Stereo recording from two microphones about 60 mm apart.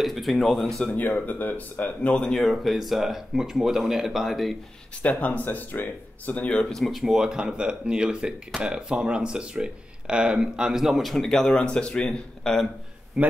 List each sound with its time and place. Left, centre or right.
0.0 s speech: centre
0.9 s speech: left
2.1 s speech: centre
5.2 s speech: left
6.6 s speech: centre
13.2 s speech: centre